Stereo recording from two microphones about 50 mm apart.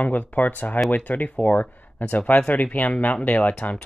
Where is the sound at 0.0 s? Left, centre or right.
Left.